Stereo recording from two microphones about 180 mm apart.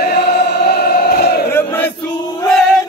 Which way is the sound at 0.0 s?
60° left (ahead or behind).